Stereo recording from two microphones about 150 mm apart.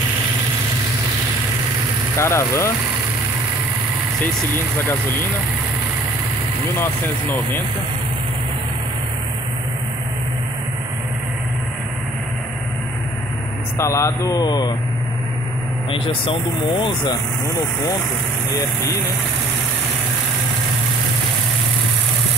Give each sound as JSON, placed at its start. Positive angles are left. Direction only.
{"t": 2.1, "sound": "speech", "side_deg": 20}
{"t": 13.7, "sound": "speech", "side_deg": 20}
{"t": 15.9, "sound": "speech", "side_deg": 35}